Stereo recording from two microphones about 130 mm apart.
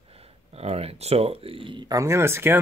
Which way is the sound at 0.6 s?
50° right (ahead or behind).